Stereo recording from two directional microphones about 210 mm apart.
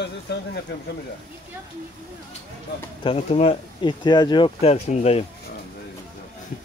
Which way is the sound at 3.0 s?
30° left (ahead or behind).